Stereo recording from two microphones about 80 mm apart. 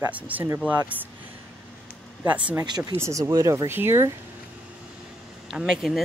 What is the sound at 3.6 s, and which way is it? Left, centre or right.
Speech, right.